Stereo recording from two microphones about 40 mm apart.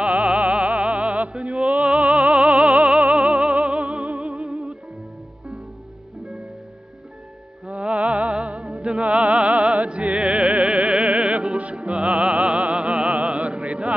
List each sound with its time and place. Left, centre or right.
0.0 s music: right
7.6 s music: right